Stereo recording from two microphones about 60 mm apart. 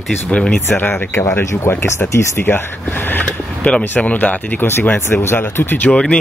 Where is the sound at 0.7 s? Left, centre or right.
Left.